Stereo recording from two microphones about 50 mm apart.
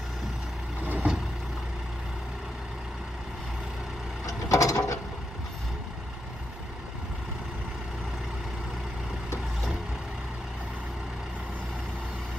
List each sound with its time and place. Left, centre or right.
0.9 s vehicle: centre
4.3 s mechanisms: left